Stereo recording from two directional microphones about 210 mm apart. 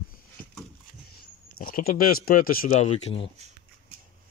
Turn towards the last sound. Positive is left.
turn(degrees=30)  # may be behind; listen again after turning